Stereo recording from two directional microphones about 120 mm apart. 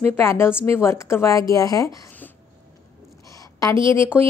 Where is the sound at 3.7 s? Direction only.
45° right (ahead or behind).